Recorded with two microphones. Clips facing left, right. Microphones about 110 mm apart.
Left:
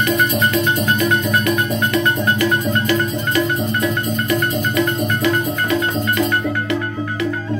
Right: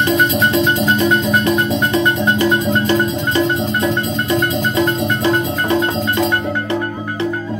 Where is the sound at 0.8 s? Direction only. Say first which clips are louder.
Right 3 dB; 30° right (ahead or behind).